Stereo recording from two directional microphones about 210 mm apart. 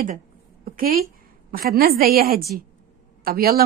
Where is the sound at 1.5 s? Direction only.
45° right (ahead or behind).